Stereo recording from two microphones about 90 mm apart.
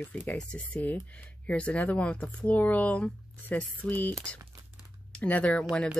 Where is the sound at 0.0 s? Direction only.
20° left (ahead or behind).